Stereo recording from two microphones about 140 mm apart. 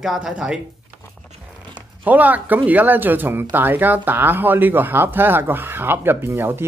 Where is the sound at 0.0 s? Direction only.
5° right (ahead or behind).